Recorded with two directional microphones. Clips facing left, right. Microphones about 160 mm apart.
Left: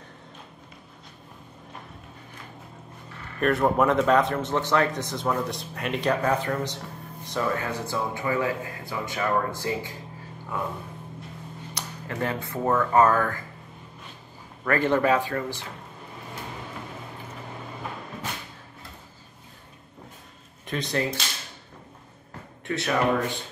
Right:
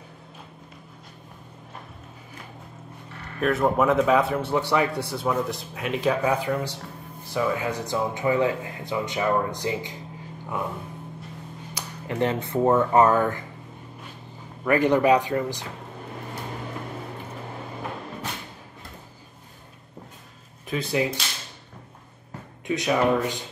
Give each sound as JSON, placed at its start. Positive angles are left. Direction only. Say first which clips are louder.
{"t": 3.3, "sound": "speech", "louder": "even", "side_deg": 0}
{"t": 12.1, "sound": "speech", "louder": "right 5 dB", "side_deg": -25}
{"t": 14.6, "sound": "speech", "louder": "right 3 dB", "side_deg": -15}
{"t": 20.6, "sound": "speech", "louder": "right 2 dB", "side_deg": -5}
{"t": 22.7, "sound": "speech", "louder": "right 2 dB", "side_deg": -15}